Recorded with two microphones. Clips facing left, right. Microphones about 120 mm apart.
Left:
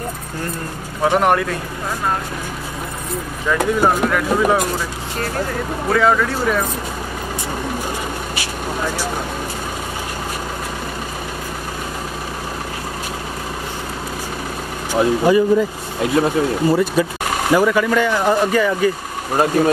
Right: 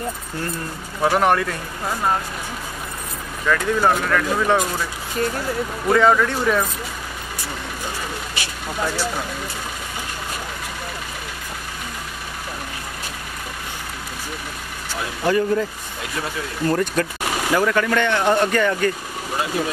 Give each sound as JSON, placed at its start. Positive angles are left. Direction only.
{"t": 1.1, "sound": "speech", "side_deg": 0}
{"t": 3.4, "sound": "speech", "side_deg": 10}
{"t": 5.9, "sound": "speech", "side_deg": 0}
{"t": 15.2, "sound": "speech", "side_deg": 10}
{"t": 16.0, "sound": "speech", "side_deg": 40}
{"t": 16.6, "sound": "speech", "side_deg": 10}
{"t": 19.3, "sound": "speech", "side_deg": 45}